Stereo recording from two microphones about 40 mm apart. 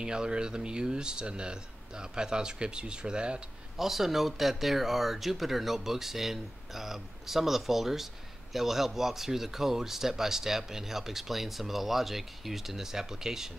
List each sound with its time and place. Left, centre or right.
0.0 s speech: right
3.7 s speech: centre